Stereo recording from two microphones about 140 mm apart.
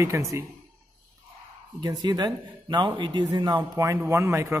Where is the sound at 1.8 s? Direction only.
30° right (ahead or behind).